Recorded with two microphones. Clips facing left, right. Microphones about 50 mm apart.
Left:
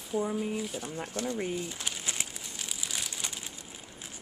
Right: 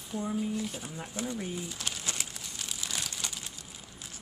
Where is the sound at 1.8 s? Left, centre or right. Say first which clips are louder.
Even; centre.